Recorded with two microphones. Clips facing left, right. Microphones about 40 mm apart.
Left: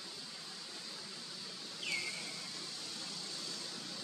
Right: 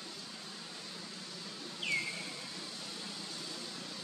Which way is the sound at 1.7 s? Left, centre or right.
Right.